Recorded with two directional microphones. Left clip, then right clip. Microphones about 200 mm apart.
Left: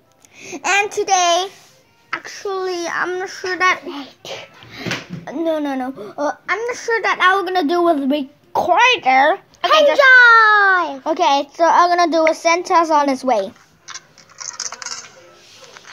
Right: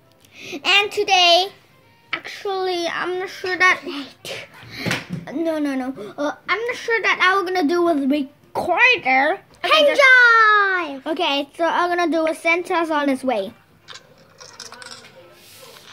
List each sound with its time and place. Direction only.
0.4 s a woman's voice: centre (ahead or behind)
6.9 s a woman's voice: 10° left (ahead or behind)
7.2 s a woman's voice: centre (ahead or behind)
9.9 s a child's voice: 10° right (ahead or behind); by 15.0 s 5° left (ahead or behind)